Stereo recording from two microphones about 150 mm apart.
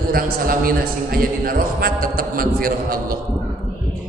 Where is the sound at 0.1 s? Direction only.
75° right (ahead or behind).